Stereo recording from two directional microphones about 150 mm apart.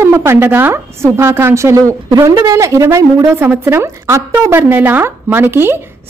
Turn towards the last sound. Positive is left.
turn(degrees=-15)  # may be behind; listen again after turning